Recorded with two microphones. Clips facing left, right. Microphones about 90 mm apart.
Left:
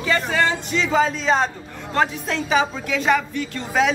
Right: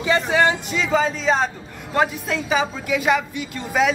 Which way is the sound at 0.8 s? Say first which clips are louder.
Even; 5° right (ahead or behind).